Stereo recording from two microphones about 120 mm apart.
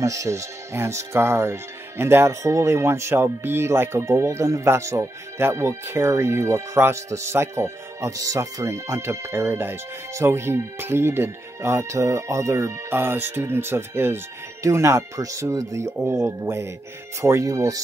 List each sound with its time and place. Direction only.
0.0 s speech: 25° right (ahead or behind)